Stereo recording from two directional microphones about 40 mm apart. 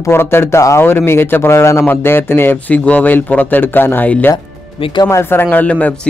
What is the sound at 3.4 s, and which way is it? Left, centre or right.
Speech, left.